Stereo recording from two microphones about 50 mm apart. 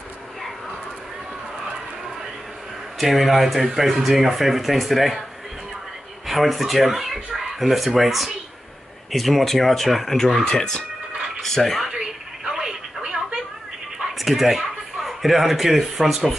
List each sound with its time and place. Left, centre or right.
3.0 s speech: centre
6.2 s speech: centre
11.9 s telephone: centre
13.9 s speech: centre